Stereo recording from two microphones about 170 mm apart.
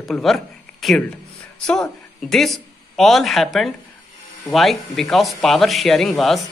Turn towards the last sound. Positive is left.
turn(degrees=0)  # may be behind; listen again after turning